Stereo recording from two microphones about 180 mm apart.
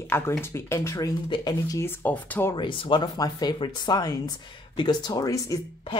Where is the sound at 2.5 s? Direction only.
25° left (ahead or behind).